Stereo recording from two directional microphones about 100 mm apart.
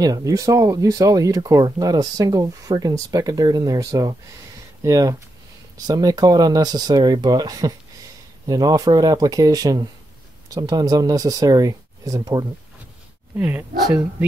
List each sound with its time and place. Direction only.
0.0 s speech: 35° right (ahead or behind)
13.4 s speech: 20° right (ahead or behind)